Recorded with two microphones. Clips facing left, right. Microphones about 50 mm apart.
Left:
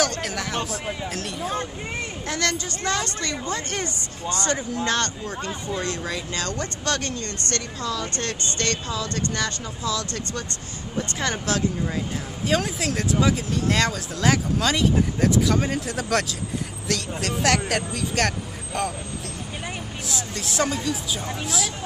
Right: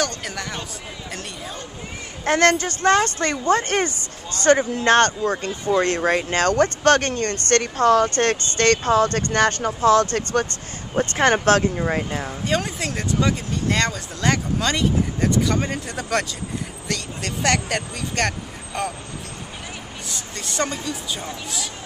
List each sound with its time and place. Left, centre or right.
0.2 s music: centre
2.2 s speech: right
12.4 s speech: centre
20.1 s speech: centre